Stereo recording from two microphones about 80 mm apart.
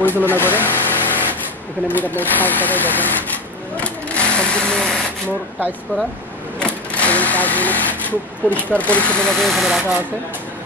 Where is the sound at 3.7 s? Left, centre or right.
Centre.